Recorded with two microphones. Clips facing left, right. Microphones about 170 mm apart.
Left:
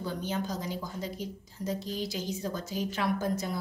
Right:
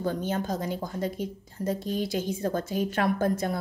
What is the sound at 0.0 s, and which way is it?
A woman's voice, 50° right (ahead or behind).